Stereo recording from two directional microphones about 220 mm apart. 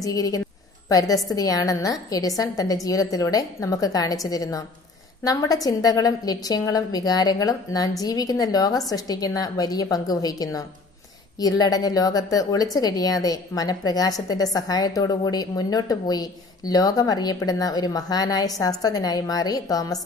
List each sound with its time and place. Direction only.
0.0 s a woman's voice: 15° left (ahead or behind)